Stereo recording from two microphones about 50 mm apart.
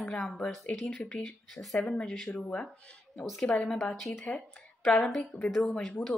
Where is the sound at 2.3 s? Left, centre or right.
Left.